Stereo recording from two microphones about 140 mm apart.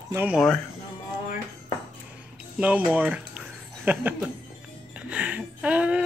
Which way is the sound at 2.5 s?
10° right (ahead or behind).